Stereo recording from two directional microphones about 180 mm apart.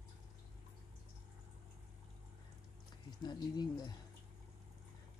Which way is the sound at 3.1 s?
25° left (ahead or behind).